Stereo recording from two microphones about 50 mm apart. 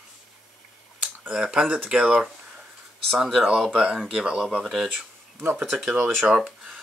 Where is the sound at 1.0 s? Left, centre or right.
Right.